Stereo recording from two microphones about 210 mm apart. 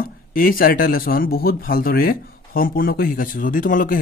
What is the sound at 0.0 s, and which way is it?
Speech, 40° left (ahead or behind).